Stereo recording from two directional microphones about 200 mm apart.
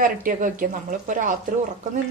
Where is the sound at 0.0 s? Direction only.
45° right (ahead or behind).